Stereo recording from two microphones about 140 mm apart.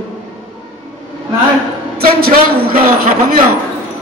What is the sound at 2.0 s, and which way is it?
Speech, 90° right.